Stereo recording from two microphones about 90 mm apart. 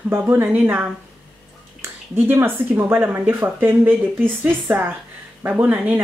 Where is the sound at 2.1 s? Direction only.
25° right (ahead or behind).